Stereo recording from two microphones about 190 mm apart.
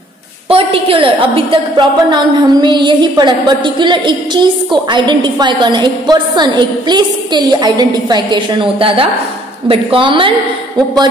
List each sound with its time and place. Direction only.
0.5 s a woman's voice: 30° right (ahead or behind)